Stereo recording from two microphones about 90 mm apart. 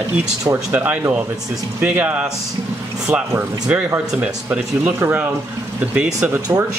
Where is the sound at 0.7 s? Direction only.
15° right (ahead or behind).